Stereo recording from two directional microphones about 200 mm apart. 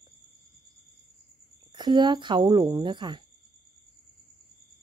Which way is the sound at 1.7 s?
20° right (ahead or behind).